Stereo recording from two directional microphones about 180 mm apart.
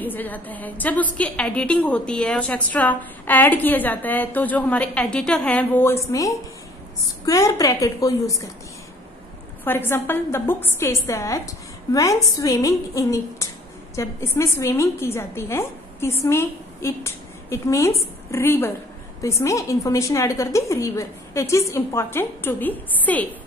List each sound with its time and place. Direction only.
0.0 s a woman's voice: 10° left (ahead or behind)
9.7 s a woman's voice: 10° left (ahead or behind)